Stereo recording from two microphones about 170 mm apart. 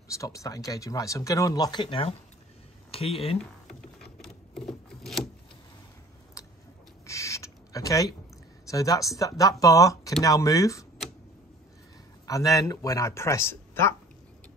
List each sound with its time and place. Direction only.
0.1 s speech: 20° left (ahead or behind); by 3.3 s 35° left (ahead or behind)
4.2 s a sound: 5° left (ahead or behind)
6.4 s chewing: 20° left (ahead or behind)
7.1 s rodents: 20° left (ahead or behind)
8.6 s speech: 20° left (ahead or behind)
12.3 s speech: 20° left (ahead or behind)